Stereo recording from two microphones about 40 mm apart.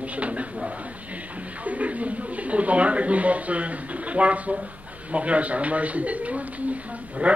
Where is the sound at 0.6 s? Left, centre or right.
Right.